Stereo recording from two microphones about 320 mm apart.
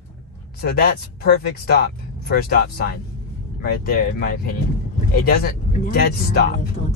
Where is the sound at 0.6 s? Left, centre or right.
Left.